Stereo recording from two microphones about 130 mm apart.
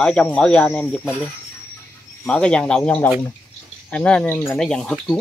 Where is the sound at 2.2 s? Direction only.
5° left (ahead or behind).